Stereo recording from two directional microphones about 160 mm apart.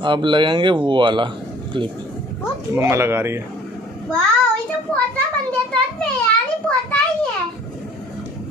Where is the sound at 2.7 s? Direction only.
15° right (ahead or behind).